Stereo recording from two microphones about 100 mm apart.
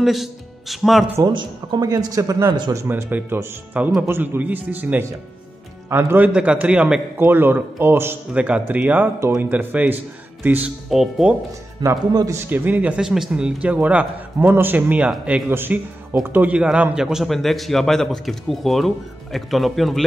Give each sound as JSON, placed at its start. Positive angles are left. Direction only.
{"t": 0.0, "sound": "speech", "side_deg": 0}
{"t": 1.2, "sound": "a man's voice", "side_deg": -50}
{"t": 7.2, "sound": "a man's voice", "side_deg": -20}
{"t": 10.9, "sound": "a man's voice", "side_deg": -5}
{"t": 12.1, "sound": "speech", "side_deg": -40}
{"t": 12.4, "sound": "a man's voice", "side_deg": -20}